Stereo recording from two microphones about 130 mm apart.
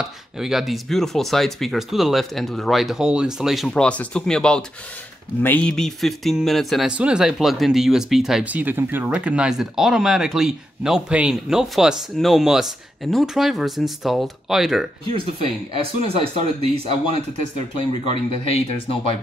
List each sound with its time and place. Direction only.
0.0 s speech: 5° right (ahead or behind)
15.1 s speech: 45° right (ahead or behind)
18.0 s speech: 40° left (ahead or behind)